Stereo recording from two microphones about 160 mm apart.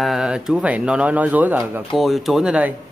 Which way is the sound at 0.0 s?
Centre (ahead or behind).